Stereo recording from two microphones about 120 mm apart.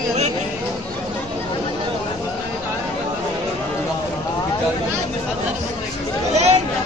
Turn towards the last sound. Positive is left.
turn(degrees=-65)  # may be behind; listen again after turning